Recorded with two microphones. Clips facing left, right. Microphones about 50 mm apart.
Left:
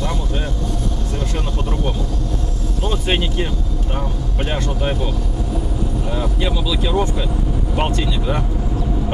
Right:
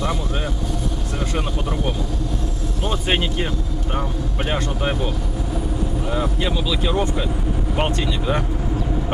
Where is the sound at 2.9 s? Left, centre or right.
Centre.